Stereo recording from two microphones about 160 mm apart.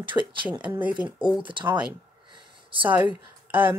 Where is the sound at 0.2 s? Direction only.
10° right (ahead or behind).